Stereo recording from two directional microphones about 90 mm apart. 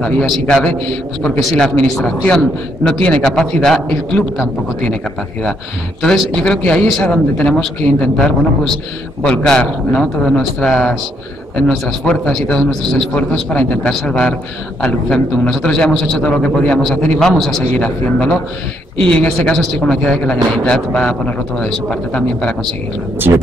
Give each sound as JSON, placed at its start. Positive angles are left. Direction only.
{"t": 0.0, "sound": "a man's voice", "side_deg": 5}
{"t": 6.0, "sound": "a man's voice", "side_deg": 10}
{"t": 17.7, "sound": "a man's voice", "side_deg": 10}
{"t": 19.4, "sound": "a man's voice", "side_deg": 5}
{"t": 23.1, "sound": "speech", "side_deg": -25}